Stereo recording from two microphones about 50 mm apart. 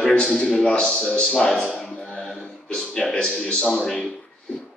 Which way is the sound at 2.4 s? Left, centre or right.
Centre.